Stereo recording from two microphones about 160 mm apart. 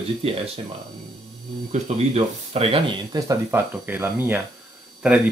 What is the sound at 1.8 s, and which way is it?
Speech, 40° right (ahead or behind).